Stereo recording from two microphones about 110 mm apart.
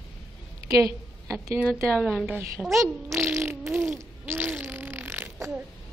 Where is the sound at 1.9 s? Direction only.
5° right (ahead or behind).